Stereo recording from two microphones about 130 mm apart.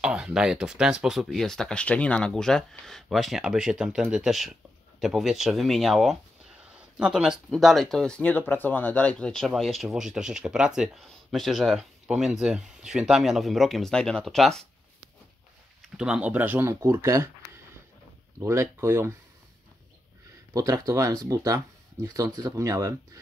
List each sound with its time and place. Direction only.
0.0 s speech: 5° right (ahead or behind)
6.6 s a sound: 5° right (ahead or behind)
7.4 s speech: centre (ahead or behind)
15.8 s speech: 5° right (ahead or behind)
18.4 s speech: 20° right (ahead or behind)
20.5 s speech: 25° right (ahead or behind)